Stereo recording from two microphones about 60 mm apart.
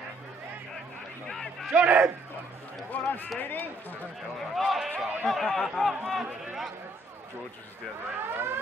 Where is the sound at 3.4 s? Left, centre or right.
Left.